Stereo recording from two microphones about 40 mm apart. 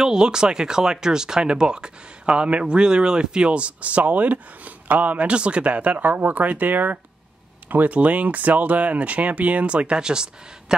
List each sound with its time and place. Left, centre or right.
0.0 s speech: centre